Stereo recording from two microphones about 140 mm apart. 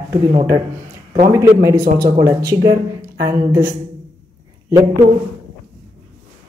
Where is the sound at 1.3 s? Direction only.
20° right (ahead or behind).